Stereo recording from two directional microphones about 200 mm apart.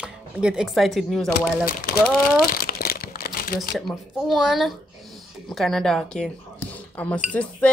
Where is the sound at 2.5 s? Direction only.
50° left (ahead or behind).